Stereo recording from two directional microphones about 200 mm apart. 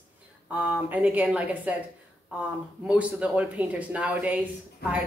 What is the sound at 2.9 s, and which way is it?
A woman's voice, 5° right (ahead or behind).